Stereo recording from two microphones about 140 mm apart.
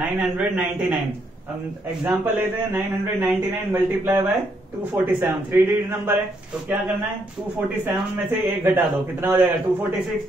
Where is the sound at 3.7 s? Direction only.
15° right (ahead or behind).